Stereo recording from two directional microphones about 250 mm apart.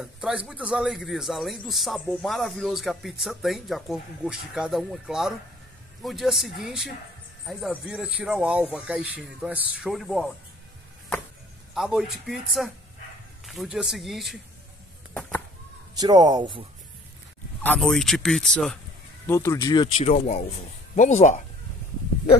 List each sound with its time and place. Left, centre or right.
0.0 s speech: centre
11.7 s speech: centre
15.1 s chop: centre
15.9 s speech: centre
17.6 s speech: centre
20.0 s speech: left